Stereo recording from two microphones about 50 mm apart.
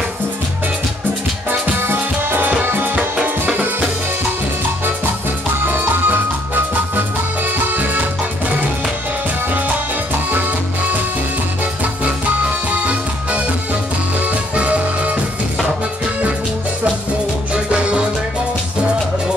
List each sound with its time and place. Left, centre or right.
1.5 s music: right
3.0 s music: right
5.7 s music: right
7.6 s music: right
14.2 s music: right
17.6 s music: right